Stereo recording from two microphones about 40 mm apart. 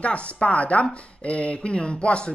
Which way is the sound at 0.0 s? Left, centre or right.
Left.